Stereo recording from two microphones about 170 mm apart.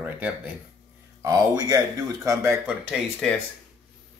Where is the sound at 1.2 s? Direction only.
20° right (ahead or behind).